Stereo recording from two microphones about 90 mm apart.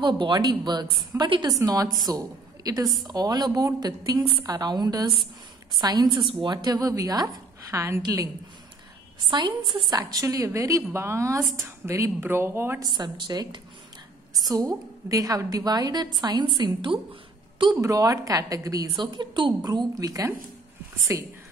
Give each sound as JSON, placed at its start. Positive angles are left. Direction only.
{"t": 0.0, "sound": "a woman's voice", "side_deg": -60}
{"t": 1.6, "sound": "a woman's voice", "side_deg": -40}
{"t": 8.0, "sound": "a woman's voice", "side_deg": -45}
{"t": 9.3, "sound": "a woman's voice", "side_deg": -60}
{"t": 12.9, "sound": "a woman's voice", "side_deg": -55}
{"t": 17.7, "sound": "a woman's voice", "side_deg": -40}
{"t": 18.9, "sound": "a woman's voice", "side_deg": -60}